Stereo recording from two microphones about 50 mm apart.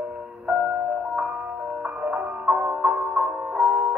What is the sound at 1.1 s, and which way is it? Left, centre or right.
Music, right.